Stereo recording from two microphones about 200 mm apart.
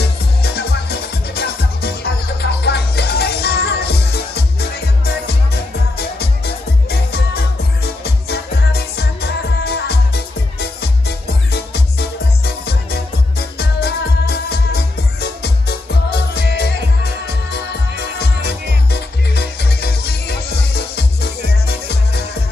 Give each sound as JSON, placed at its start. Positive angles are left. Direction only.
{"t": 0.0, "sound": "music", "side_deg": 55}